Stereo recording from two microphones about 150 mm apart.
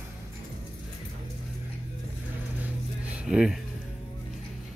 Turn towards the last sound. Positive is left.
turn(degrees=-5)  # may be behind; listen again after turning